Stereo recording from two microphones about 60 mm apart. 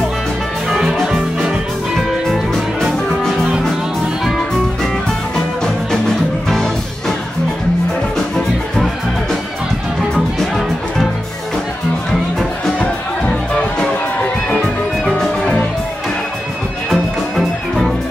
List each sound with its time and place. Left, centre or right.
0.7 s music: centre
5.6 s music: centre
8.7 s music: centre
12.1 s music: centre
16.9 s music: centre